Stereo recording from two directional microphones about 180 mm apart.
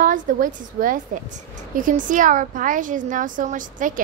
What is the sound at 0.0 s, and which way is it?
A woman's voice, 50° right (ahead or behind).